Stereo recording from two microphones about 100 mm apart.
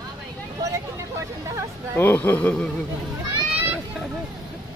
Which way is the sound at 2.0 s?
20° left (ahead or behind).